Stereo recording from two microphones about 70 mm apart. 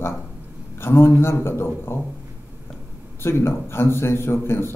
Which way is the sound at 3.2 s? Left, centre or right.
Left.